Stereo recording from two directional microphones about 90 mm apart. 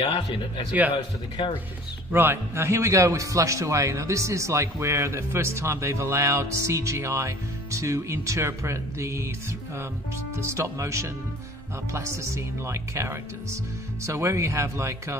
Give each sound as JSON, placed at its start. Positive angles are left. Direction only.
{"t": 0.9, "sound": "speech", "side_deg": 65}
{"t": 2.1, "sound": "a man's voice", "side_deg": -25}
{"t": 10.3, "sound": "a man's voice", "side_deg": -30}